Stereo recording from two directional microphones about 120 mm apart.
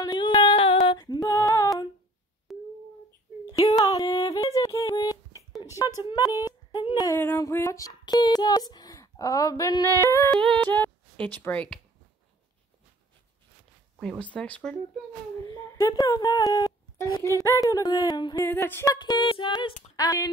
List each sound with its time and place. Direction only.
0.0 s female singing: 40° left (ahead or behind)
1.0 s female singing: 35° left (ahead or behind)
2.5 s a sound: centre (ahead or behind)
3.5 s a sound: 30° left (ahead or behind)
6.0 s female singing: 35° left (ahead or behind)
7.2 s speech: 20° left (ahead or behind)
10.3 s speech: 5° left (ahead or behind)
13.9 s speech: 5° left (ahead or behind)
15.4 s speech: 25° left (ahead or behind)
18.4 s speech: 20° left (ahead or behind)
18.9 s a sound: 40° left (ahead or behind)
20.0 s speech: 30° left (ahead or behind)